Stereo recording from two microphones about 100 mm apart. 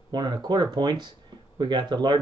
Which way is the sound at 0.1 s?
45° right (ahead or behind).